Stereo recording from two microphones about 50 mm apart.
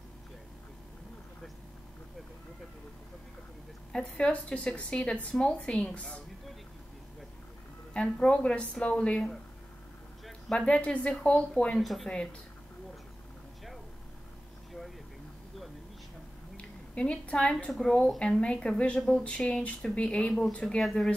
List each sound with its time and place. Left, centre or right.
3.9 s a woman's voice: left
7.9 s a woman's voice: left
10.6 s a woman's voice: left
11.8 s speech: centre
12.1 s speech: centre
16.5 s a woman's voice: left
20.8 s speech: centre